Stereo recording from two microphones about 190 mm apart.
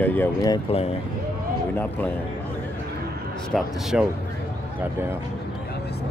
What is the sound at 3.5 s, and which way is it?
Speech, centre (ahead or behind).